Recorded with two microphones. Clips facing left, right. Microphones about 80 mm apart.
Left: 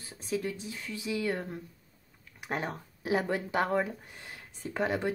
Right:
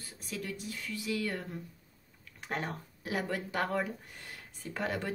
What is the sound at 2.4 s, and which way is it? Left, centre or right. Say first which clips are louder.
Speech: left 2 dB; centre.